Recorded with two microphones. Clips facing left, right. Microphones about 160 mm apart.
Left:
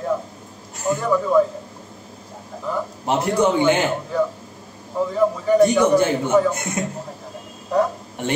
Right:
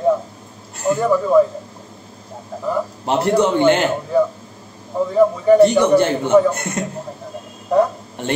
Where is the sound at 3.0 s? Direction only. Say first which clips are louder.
Right 2 dB; 10° left (ahead or behind).